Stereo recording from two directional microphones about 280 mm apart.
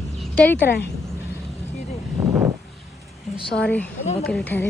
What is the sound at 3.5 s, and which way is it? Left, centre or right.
Speech, centre.